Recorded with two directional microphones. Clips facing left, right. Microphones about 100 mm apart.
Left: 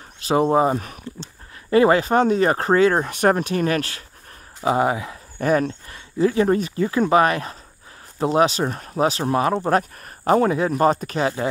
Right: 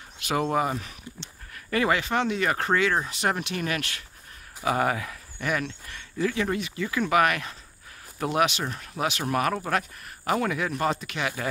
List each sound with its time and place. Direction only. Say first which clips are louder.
0.2 s speech: left 8 dB; 30° left (ahead or behind)
0.7 s speech: left 7 dB; 45° left (ahead or behind)
1.7 s speech: left 9 dB; 35° left (ahead or behind)
4.6 s speech: left 5 dB; 20° left (ahead or behind)
5.4 s speech: left 9 dB; 40° left (ahead or behind)